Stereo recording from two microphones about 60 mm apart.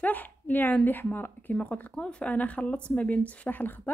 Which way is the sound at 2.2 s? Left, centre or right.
Left.